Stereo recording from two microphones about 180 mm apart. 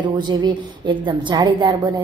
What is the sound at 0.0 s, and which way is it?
A woman's voice, 25° right (ahead or behind).